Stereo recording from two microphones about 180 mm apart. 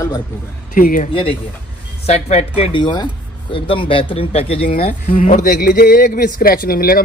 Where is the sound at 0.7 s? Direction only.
50° left (ahead or behind).